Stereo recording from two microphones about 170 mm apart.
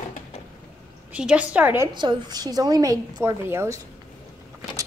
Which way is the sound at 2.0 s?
25° right (ahead or behind).